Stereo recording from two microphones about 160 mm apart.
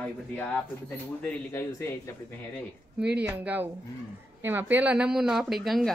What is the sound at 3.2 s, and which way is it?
A woman's voice, 10° right (ahead or behind).